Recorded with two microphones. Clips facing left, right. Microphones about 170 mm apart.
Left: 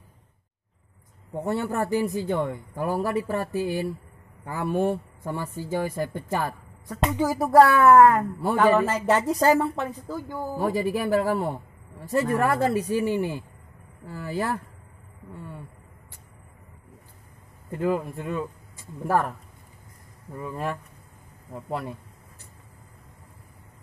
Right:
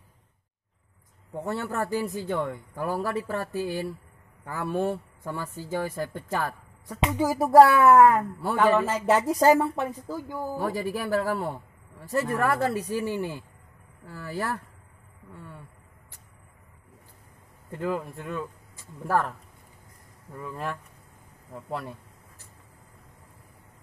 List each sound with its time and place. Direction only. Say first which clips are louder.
1.3 s speech: left 4 dB; 15° left (ahead or behind)
7.2 s a woman's voice: right 1 dB; 10° right (ahead or behind)
9.3 s a woman's voice: right 2 dB; 15° right (ahead or behind)
10.6 s speech: left 6 dB; 15° left (ahead or behind)
15.3 s a sound: left 4 dB; 15° left (ahead or behind)
17.6 s speech: left 4 dB; 10° left (ahead or behind)
20.3 s speech: left 3 dB; 10° left (ahead or behind)